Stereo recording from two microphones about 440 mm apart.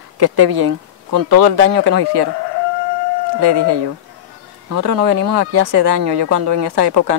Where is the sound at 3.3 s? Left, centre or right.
Right.